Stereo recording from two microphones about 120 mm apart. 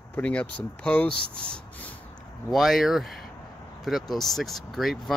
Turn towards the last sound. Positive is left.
turn(degrees=0)  # may be behind; listen again after turning